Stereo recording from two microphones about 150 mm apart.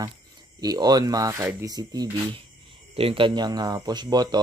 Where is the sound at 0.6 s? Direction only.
25° right (ahead or behind).